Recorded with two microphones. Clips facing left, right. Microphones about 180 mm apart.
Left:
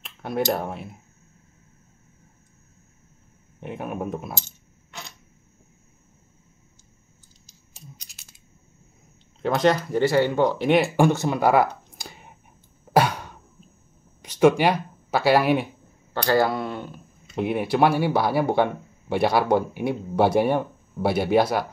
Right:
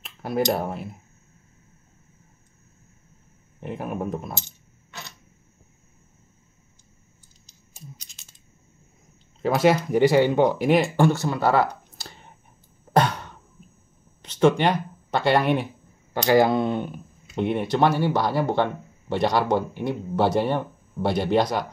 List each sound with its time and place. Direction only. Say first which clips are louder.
0.0 s a sound: right 1 dB; centre (ahead or behind)
0.5 s speech: right 1 dB; centre (ahead or behind)
3.6 s speech: right 1 dB; centre (ahead or behind)
4.3 s speech: even; 20° right (ahead or behind)
9.4 s speech: right 1 dB; 5° right (ahead or behind)
9.8 s speech: right 2 dB; 15° right (ahead or behind)
11.0 s a sound: left 1 dB; 20° left (ahead or behind)
14.6 s speech: left 1 dB; 5° left (ahead or behind)
16.1 s speech: right 3 dB; 20° right (ahead or behind)
17.4 s speech: left 1 dB; 5° left (ahead or behind)